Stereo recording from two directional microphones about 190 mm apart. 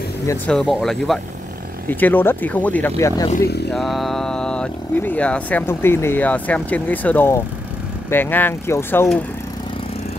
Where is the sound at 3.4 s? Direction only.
60° left (ahead or behind).